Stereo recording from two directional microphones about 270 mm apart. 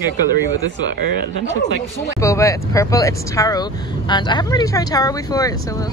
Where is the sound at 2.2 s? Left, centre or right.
Centre.